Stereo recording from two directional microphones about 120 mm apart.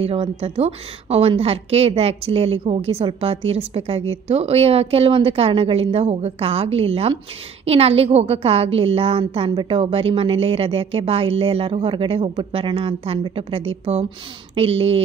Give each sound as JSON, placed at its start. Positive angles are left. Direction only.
{"t": 0.0, "sound": "a woman's voice", "side_deg": -55}